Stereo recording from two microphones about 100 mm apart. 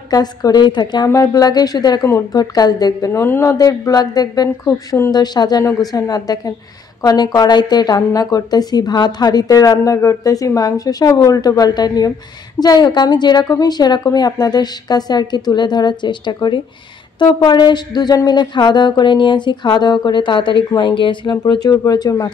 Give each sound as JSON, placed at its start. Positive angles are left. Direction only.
{"t": 0.1, "sound": "speech", "side_deg": 40}
{"t": 1.0, "sound": "a woman's voice", "side_deg": 30}
{"t": 3.1, "sound": "a woman's voice", "side_deg": 25}
{"t": 4.6, "sound": "speech", "side_deg": 25}
{"t": 5.1, "sound": "a woman's voice", "side_deg": 45}